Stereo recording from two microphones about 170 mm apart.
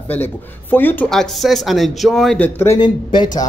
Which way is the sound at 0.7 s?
10° left (ahead or behind).